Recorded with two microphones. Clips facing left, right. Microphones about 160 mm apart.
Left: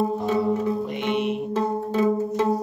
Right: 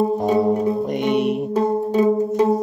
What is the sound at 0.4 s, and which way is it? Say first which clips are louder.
Music: right 5 dB; 35° right (ahead or behind).